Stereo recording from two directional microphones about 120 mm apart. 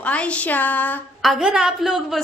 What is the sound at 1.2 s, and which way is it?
Speech, 5° right (ahead or behind).